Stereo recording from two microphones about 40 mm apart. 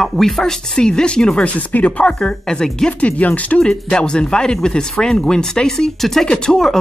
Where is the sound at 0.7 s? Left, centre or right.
Left.